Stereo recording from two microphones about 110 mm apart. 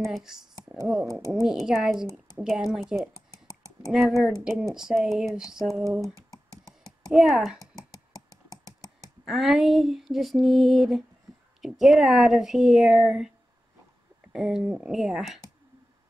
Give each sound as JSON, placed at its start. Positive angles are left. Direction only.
{"t": 0.0, "sound": "female singing", "side_deg": 0}
{"t": 6.8, "sound": "speech", "side_deg": -5}
{"t": 7.7, "sound": "a sound", "side_deg": 35}
{"t": 9.2, "sound": "female singing", "side_deg": 0}
{"t": 14.3, "sound": "female singing", "side_deg": -5}